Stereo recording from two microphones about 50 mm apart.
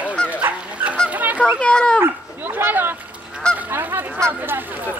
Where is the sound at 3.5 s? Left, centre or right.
Right.